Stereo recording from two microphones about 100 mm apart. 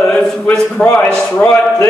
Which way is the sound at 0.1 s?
5° left (ahead or behind).